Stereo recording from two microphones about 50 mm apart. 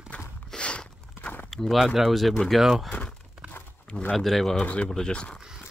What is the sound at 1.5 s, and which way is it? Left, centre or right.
Speech, centre.